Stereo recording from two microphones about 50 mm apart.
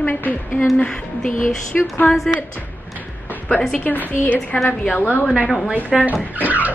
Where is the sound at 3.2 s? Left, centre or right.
Left.